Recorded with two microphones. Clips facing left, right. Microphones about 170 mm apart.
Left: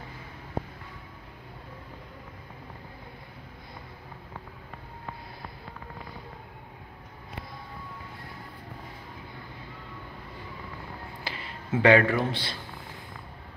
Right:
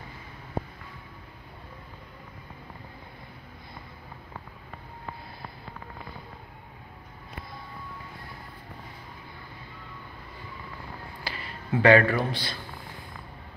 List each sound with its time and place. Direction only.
11.2 s speech: 25° left (ahead or behind)